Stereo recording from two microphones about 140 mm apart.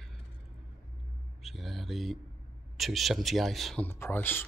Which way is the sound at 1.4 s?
Centre (ahead or behind).